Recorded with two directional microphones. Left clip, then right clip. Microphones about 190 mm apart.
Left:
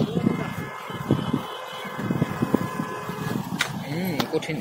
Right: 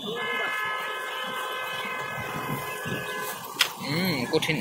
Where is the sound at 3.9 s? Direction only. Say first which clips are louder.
Right 1 dB; centre (ahead or behind).